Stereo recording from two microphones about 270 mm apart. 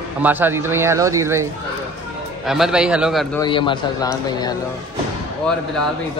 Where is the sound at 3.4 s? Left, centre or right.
Centre.